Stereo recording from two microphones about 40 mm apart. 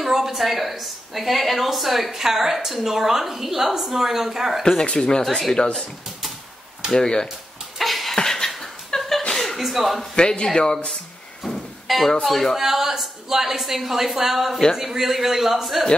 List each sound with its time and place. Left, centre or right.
0.0 s a woman's voice: centre
4.9 s a man's voice: centre
7.0 s speech: centre
7.8 s a sound: centre
8.2 s a sound: centre
8.5 s laughter: centre
9.3 s chuckle: centre
9.6 s speech: centre
10.1 s a man's voice: left
11.4 s music: centre
12.1 s speech: centre
12.5 s a woman's voice: centre